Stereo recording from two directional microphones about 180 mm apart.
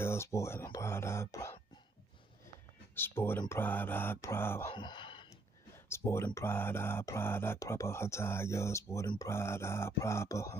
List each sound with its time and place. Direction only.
0.0 s speech: 15° left (ahead or behind)
2.9 s speech: 10° left (ahead or behind)
4.7 s sigh: 25° left (ahead or behind)
5.9 s speech: 15° left (ahead or behind)